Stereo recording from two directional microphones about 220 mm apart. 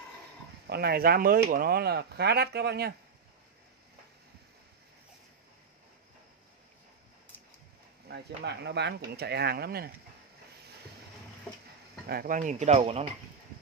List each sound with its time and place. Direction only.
0.7 s speech: 45° right (ahead or behind)
8.1 s speech: 50° right (ahead or behind)
12.1 s speech: 40° right (ahead or behind)